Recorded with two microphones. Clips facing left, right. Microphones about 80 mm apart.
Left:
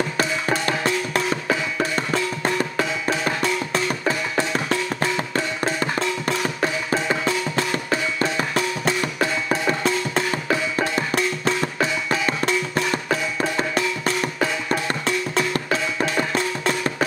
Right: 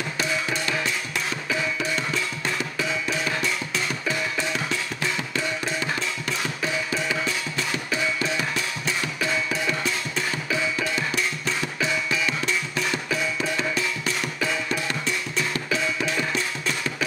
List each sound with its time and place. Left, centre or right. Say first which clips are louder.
0.2 s music: left 2 dB; left